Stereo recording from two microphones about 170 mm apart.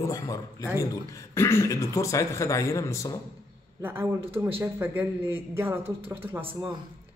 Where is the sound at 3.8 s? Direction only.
15° right (ahead or behind).